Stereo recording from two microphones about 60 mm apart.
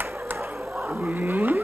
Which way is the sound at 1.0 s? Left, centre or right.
Right.